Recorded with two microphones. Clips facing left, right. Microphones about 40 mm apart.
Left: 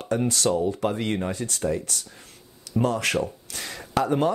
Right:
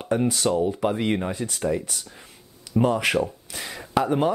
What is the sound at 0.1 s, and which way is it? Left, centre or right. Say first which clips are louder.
Speech: right 1 dB; centre.